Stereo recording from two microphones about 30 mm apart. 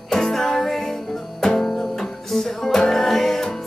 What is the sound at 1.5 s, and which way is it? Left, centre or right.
Music, left.